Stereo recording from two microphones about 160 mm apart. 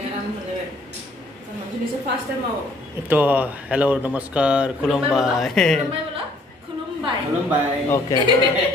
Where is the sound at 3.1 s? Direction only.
10° right (ahead or behind).